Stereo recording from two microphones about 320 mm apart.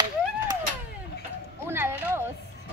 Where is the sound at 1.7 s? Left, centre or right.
Centre.